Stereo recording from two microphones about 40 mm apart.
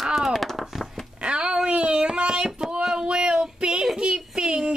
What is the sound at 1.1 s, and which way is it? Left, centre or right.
Speech, right.